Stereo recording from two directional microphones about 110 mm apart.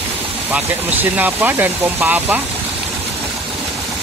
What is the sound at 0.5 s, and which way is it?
Speech, 15° right (ahead or behind).